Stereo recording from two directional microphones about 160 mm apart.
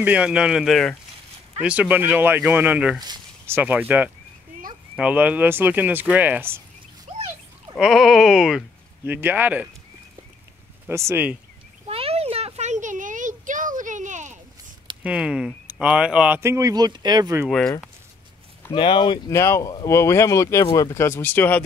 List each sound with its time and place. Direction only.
0.0 s speech: 5° right (ahead or behind)
3.0 s a sound: 25° right (ahead or behind)
3.5 s speech: 10° right (ahead or behind)
7.7 s speech: centre (ahead or behind)
10.9 s speech: 15° right (ahead or behind)
11.9 s a sound: 40° right (ahead or behind)
15.0 s speech: 5° right (ahead or behind); by 17.4 s 25° right (ahead or behind)
17.5 s speech: centre (ahead or behind)
18.7 s speech: 30° left (ahead or behind)
19.3 s speech: 15° left (ahead or behind)